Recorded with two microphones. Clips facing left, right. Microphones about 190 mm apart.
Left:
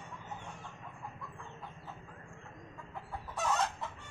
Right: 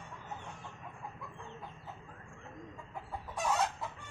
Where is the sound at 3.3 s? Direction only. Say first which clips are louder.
Even; 10° right (ahead or behind).